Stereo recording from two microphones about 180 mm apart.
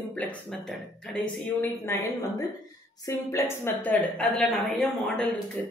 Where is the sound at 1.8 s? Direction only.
15° left (ahead or behind).